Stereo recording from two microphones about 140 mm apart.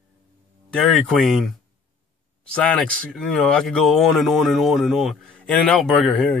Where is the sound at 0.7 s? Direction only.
5° left (ahead or behind).